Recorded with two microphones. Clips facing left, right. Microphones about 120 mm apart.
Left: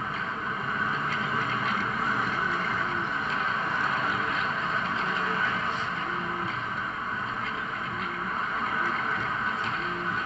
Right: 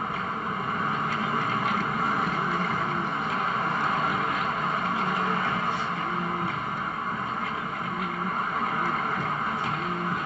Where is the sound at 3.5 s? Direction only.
40° right (ahead or behind).